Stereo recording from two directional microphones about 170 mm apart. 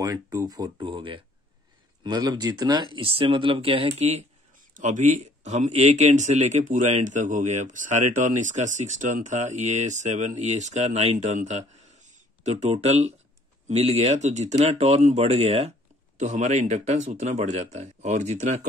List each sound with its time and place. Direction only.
0.0 s speech: 20° right (ahead or behind); by 18.6 s 45° right (ahead or behind)